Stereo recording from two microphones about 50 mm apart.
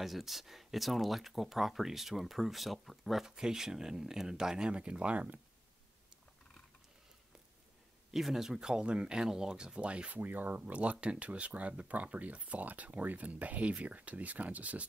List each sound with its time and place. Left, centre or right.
0.0 s speech: centre; by 5.4 s right
8.1 s speech: centre; by 10.1 s right
10.1 s speech: right
10.6 s speech: right